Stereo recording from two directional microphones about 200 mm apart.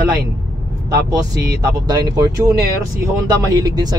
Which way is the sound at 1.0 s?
20° right (ahead or behind).